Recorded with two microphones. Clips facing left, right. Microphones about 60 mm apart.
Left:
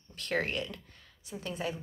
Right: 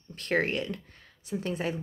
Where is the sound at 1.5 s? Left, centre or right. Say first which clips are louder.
Right 2 dB; right.